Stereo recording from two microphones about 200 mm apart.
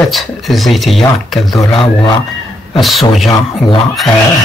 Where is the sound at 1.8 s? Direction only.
25° left (ahead or behind).